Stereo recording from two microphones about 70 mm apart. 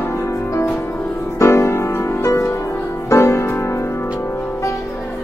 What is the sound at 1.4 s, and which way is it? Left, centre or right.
Music, left.